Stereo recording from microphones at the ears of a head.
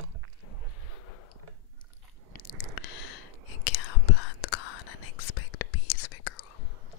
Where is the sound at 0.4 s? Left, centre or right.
Left.